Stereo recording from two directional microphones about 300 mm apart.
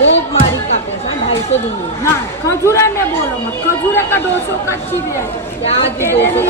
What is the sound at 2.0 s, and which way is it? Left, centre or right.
Speech, centre.